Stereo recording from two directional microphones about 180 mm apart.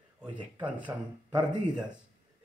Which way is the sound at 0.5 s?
10° right (ahead or behind).